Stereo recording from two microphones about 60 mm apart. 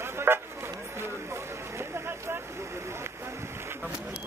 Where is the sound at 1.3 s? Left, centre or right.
Right.